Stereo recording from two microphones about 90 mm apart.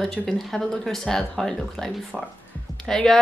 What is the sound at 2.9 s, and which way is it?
Speech, 5° left (ahead or behind).